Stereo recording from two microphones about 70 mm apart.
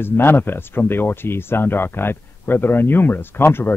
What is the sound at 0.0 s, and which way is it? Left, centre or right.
Speech, left.